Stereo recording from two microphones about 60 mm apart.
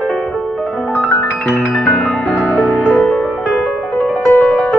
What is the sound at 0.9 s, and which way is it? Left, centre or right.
Music, left.